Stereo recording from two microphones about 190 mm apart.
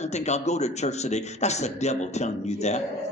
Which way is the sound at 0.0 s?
35° left (ahead or behind).